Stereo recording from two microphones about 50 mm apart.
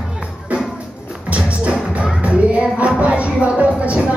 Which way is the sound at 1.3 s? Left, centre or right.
Right.